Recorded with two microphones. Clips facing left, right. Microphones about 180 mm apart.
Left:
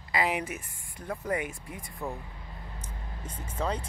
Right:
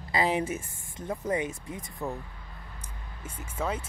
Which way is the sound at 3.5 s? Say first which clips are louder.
Even; 5° right (ahead or behind).